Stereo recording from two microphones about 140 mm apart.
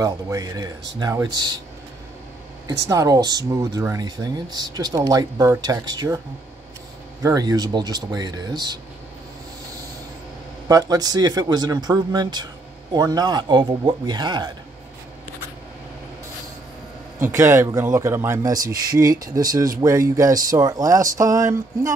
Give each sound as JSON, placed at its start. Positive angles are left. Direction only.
{"t": 0.0, "sound": "speech", "side_deg": -20}
{"t": 2.9, "sound": "speech", "side_deg": -25}
{"t": 7.2, "sound": "speech", "side_deg": -25}
{"t": 10.7, "sound": "a man's voice", "side_deg": -25}
{"t": 17.2, "sound": "speech", "side_deg": -20}